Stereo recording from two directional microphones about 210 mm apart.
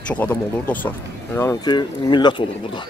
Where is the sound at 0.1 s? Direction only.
10° left (ahead or behind).